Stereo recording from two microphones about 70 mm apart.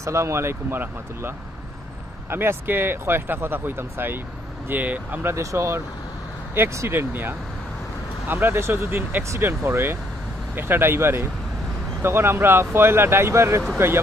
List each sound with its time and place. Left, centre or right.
0.0 s speech: right
2.3 s speech: right
5.3 s speech: right
6.5 s speech: right